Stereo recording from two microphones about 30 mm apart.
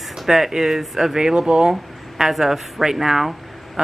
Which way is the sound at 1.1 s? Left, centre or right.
Right.